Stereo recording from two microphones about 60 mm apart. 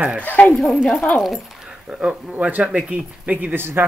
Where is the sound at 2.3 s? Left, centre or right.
Right.